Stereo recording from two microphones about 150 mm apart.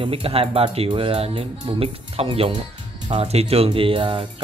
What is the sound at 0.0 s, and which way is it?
Speech, 40° right (ahead or behind).